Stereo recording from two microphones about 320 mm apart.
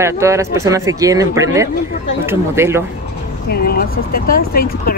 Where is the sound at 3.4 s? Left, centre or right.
Left.